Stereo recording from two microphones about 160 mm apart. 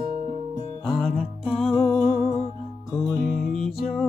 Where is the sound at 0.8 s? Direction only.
5° left (ahead or behind).